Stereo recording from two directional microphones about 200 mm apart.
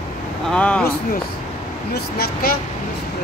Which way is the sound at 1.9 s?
50° left (ahead or behind).